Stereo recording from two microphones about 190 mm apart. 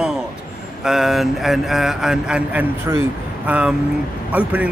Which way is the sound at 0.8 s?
Centre (ahead or behind).